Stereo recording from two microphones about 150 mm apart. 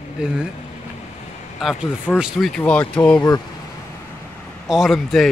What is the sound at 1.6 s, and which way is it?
Speech, 5° right (ahead or behind).